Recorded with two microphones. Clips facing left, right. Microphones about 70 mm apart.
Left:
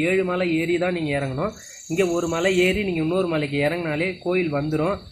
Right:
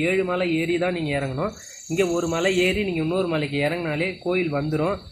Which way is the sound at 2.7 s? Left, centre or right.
Left.